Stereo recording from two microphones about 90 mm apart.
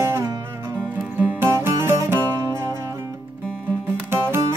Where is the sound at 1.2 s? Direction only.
25° right (ahead or behind).